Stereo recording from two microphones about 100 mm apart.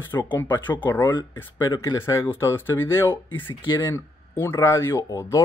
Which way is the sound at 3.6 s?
50° left (ahead or behind).